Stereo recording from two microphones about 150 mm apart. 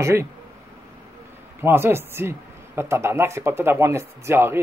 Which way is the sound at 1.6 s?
15° right (ahead or behind).